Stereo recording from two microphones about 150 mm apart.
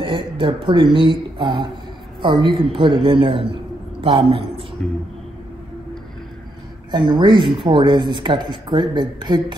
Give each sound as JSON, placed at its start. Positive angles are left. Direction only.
{"t": 0.0, "sound": "speech", "side_deg": -35}
{"t": 6.9, "sound": "speech", "side_deg": -30}